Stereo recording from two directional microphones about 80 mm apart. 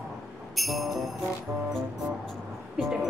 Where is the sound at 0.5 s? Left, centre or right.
Centre.